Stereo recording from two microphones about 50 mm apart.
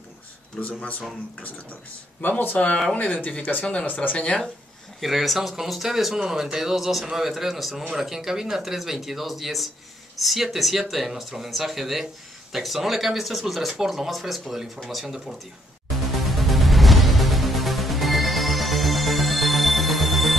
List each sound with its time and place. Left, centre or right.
0.6 s speech: centre
2.2 s speech: left
5.0 s speech: centre
16.1 s music: centre